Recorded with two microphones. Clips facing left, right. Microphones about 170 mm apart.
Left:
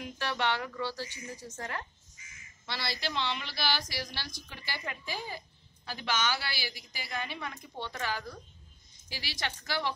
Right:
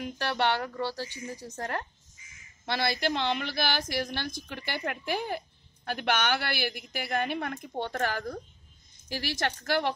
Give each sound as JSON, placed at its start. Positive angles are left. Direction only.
{"t": 0.4, "sound": "speech", "side_deg": -40}
{"t": 1.6, "sound": "a woman's voice", "side_deg": -50}